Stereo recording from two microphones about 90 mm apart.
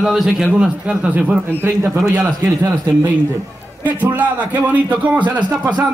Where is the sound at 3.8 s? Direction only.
20° right (ahead or behind).